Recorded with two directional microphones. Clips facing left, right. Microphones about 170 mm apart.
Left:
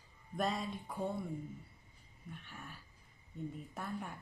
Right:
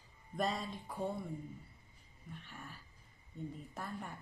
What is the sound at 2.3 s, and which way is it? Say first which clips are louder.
Speech: even; centre (ahead or behind).